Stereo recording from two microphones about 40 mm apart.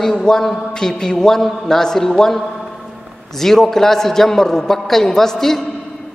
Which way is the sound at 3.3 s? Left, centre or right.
Centre.